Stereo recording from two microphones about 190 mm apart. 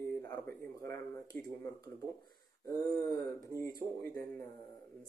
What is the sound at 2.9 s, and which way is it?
Speech, 20° left (ahead or behind).